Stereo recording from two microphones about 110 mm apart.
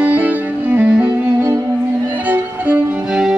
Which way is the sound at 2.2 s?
15° right (ahead or behind).